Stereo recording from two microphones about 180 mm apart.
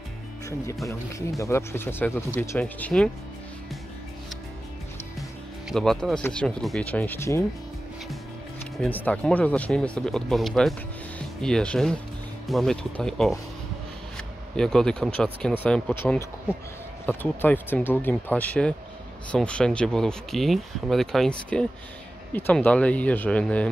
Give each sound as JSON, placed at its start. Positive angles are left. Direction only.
{"t": 0.8, "sound": "speech", "side_deg": 15}
{"t": 5.7, "sound": "speech", "side_deg": 5}
{"t": 8.7, "sound": "speech", "side_deg": 10}